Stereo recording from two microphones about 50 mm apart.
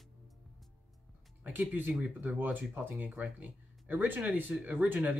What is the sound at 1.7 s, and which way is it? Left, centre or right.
Speech, right.